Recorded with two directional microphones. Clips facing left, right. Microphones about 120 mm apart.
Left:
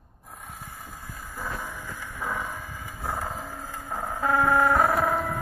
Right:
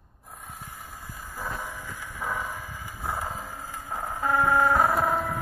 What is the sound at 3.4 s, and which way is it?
Vehicle, 10° left (ahead or behind).